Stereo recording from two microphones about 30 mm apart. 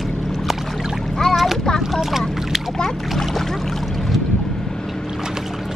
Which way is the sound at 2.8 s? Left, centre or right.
Centre.